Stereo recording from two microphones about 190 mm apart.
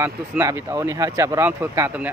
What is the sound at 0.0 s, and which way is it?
Speech, 15° right (ahead or behind).